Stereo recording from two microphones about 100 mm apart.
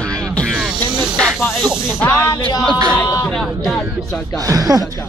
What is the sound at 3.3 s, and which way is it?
Speech, 5° left (ahead or behind).